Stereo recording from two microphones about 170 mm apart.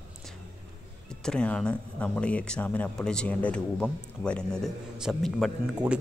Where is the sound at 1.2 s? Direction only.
5° left (ahead or behind).